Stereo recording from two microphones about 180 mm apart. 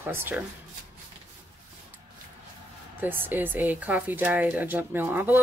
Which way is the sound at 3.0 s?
10° right (ahead or behind).